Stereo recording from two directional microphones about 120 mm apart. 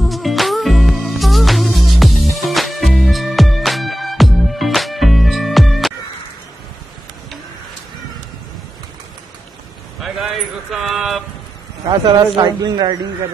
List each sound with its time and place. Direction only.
0.1 s music: centre (ahead or behind)
10.0 s a sound: 5° right (ahead or behind)
11.9 s a man's voice: 40° right (ahead or behind)